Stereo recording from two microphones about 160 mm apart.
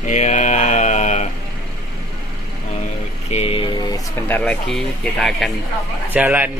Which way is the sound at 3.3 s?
40° left (ahead or behind).